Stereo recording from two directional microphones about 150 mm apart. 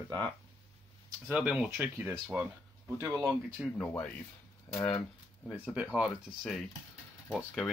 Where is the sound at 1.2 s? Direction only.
10° right (ahead or behind).